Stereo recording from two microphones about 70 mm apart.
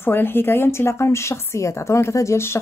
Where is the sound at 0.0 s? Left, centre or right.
Left.